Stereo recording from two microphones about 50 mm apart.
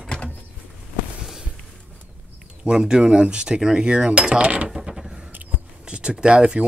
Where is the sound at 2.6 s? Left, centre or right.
Centre.